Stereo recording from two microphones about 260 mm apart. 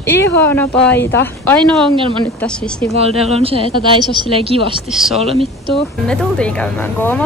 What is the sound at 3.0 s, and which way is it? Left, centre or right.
Speech, right.